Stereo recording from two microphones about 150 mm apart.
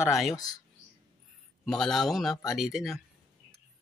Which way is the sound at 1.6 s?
Centre (ahead or behind).